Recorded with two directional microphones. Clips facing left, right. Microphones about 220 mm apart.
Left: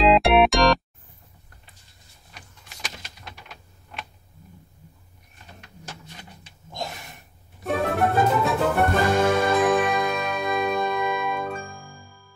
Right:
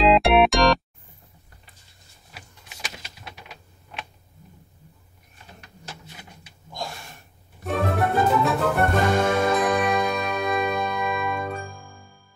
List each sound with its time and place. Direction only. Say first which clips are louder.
0.0 s music: even; centre (ahead or behind)
2.3 s a sound: right 2 dB; 5° right (ahead or behind)
6.7 s gasp: left 1 dB; 20° left (ahead or behind)
7.7 s music: left 1 dB; centre (ahead or behind)